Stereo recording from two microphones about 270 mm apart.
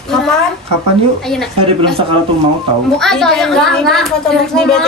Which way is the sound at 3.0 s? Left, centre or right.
Centre.